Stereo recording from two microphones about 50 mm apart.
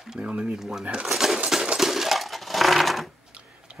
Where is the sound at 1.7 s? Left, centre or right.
Centre.